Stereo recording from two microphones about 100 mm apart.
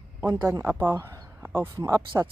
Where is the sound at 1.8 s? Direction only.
35° right (ahead or behind).